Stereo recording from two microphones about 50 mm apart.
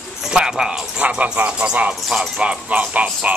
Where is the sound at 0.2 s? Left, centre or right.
Centre.